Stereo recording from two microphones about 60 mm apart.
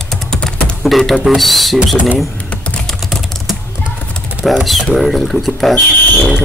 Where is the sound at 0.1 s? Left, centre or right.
Centre.